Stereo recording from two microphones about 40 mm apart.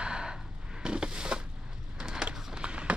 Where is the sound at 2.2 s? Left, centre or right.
Right.